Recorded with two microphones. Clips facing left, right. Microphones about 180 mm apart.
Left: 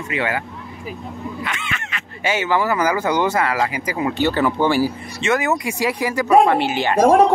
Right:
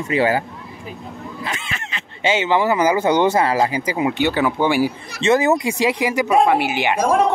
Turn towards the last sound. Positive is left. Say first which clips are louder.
# left 4 dB
turn(degrees=35)  # may be behind; listen again after turning